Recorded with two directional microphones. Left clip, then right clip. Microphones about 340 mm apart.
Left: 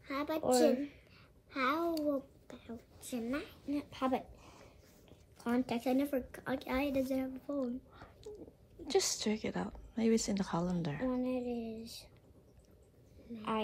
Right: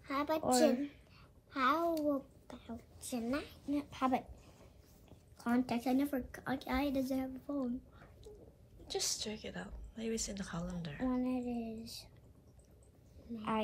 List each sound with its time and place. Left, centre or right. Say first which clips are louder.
0.0 s a woman's voice: right 1 dB; centre
5.4 s a woman's voice: even; centre
8.8 s a woman's voice: left 5 dB; left
11.1 s a woman's voice: even; centre